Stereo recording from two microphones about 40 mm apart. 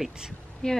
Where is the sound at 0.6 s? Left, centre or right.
Centre.